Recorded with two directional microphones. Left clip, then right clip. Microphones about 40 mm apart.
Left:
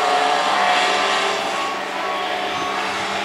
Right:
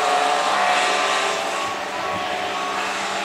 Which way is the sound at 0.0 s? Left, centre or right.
Right.